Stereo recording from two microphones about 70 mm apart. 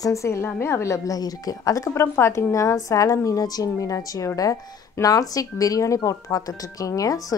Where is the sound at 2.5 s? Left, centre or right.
Left.